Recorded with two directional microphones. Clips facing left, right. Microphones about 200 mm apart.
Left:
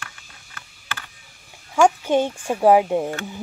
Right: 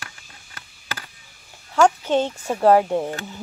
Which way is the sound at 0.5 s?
35° right (ahead or behind).